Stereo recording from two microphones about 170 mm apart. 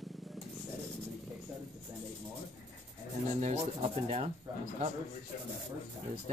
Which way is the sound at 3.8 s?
35° right (ahead or behind).